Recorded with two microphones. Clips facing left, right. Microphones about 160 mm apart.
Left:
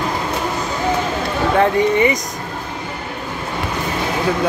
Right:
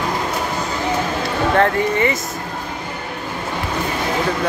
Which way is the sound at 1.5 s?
15° left (ahead or behind).